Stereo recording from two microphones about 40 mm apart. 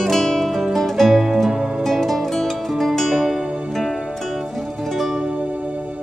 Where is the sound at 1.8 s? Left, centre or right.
Centre.